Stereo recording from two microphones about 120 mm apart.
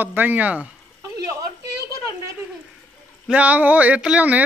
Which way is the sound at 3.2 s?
10° right (ahead or behind).